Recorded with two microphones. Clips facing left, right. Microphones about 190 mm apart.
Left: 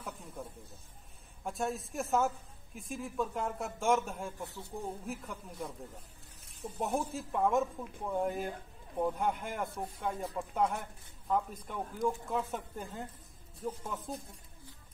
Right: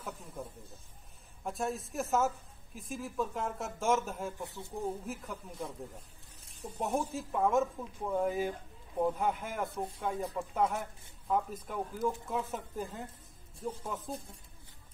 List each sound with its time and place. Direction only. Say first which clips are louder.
0.0 s speech: right 1 dB; centre (ahead or behind)
4.4 s speech: right 1 dB; 20° right (ahead or behind)
5.0 s speech: even; centre (ahead or behind)
6.8 s speech: right 1 dB; centre (ahead or behind)